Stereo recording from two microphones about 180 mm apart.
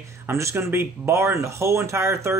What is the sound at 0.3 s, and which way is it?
Speech, 15° right (ahead or behind).